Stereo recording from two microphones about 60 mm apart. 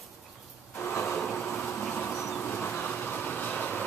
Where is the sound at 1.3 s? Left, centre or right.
Left.